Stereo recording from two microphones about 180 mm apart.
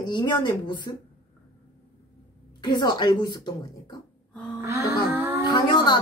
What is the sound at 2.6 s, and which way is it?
Speech, 25° left (ahead or behind).